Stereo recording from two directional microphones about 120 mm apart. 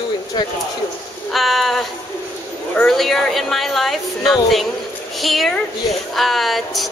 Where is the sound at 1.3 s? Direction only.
Centre (ahead or behind).